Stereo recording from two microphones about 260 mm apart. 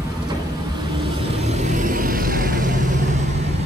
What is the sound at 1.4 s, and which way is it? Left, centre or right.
Vehicle, right.